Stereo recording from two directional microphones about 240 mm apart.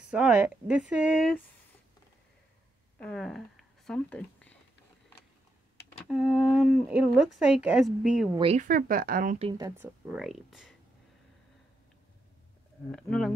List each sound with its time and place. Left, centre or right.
0.1 s speech: centre
3.0 s speech: centre
6.0 s speech: centre
8.4 s speech: right
9.5 s speech: centre
12.9 s speech: centre